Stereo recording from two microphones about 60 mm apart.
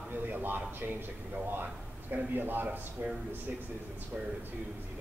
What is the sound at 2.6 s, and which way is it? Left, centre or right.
Speech, right.